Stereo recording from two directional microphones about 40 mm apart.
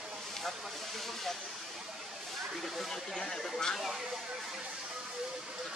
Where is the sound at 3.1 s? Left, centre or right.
Centre.